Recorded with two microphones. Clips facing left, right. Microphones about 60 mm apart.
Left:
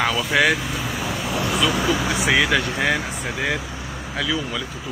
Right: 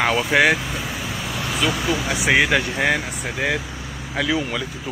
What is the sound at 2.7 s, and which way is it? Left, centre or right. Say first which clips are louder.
Speech: right 1 dB; right.